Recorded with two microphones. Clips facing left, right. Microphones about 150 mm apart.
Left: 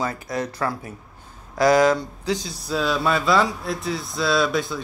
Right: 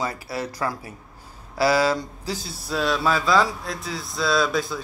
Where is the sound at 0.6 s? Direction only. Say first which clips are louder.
Left 2 dB; 10° right (ahead or behind).